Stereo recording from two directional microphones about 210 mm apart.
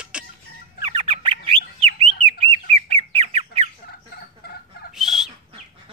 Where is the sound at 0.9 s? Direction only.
25° right (ahead or behind).